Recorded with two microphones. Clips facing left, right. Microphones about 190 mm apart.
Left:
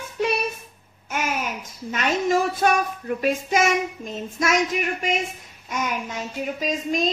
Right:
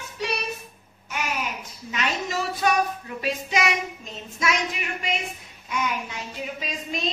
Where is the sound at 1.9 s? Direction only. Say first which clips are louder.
Left 7 dB; 50° left (ahead or behind).